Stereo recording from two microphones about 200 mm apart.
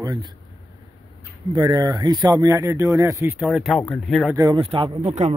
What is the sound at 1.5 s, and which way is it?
A man's voice, 20° right (ahead or behind).